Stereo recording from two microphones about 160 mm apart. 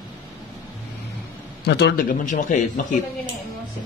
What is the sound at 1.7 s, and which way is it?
Speech, 90° left.